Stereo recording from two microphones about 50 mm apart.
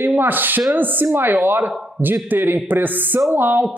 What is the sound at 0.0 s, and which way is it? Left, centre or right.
A man's voice, right.